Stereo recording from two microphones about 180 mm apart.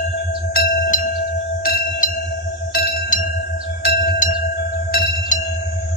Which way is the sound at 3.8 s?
55° left (ahead or behind).